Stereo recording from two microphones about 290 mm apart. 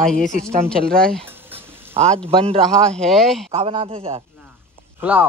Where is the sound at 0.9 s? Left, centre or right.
Centre.